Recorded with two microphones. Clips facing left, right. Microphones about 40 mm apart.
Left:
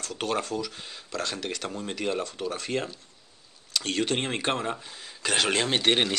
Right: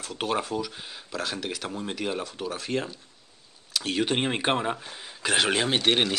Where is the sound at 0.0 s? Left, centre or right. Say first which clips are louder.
Right 1 dB; centre.